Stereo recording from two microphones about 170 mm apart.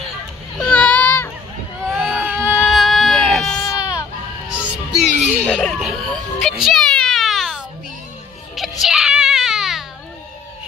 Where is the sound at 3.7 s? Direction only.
20° left (ahead or behind).